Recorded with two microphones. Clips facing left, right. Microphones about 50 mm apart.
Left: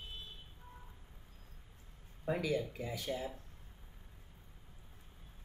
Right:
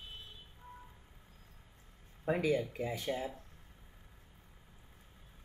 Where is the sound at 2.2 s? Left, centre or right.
Right.